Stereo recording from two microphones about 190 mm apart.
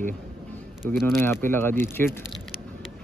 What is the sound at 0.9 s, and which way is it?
Speech, centre (ahead or behind).